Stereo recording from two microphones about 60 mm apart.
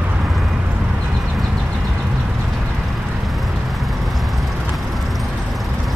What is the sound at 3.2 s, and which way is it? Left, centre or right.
Vehicle, centre.